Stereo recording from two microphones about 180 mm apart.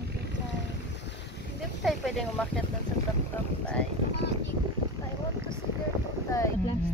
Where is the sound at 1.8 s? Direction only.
Centre (ahead or behind).